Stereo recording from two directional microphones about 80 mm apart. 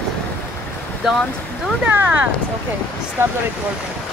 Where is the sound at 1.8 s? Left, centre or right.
Centre.